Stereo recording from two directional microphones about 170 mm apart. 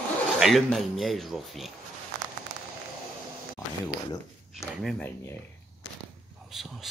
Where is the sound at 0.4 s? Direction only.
Centre (ahead or behind).